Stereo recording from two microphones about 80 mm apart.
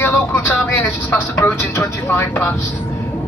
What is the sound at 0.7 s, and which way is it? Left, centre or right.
Speech, left.